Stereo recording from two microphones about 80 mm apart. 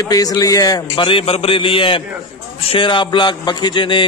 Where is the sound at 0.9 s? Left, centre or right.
Left.